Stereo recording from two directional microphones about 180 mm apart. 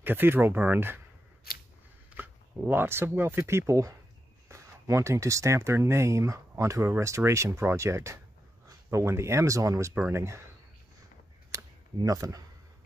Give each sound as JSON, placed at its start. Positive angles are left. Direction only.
{"t": 0.0, "sound": "speech", "side_deg": -10}
{"t": 1.5, "sound": "scissors", "side_deg": 55}
{"t": 2.0, "sound": "speech", "side_deg": -10}
{"t": 11.5, "sound": "a sound", "side_deg": -20}